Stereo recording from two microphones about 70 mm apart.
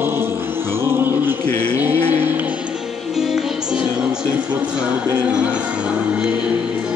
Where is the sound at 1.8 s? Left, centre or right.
Right.